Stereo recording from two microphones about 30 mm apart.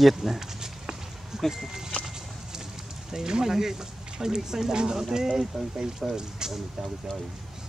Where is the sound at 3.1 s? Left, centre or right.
Centre.